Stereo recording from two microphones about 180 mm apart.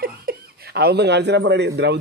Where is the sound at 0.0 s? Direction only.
55° right (ahead or behind).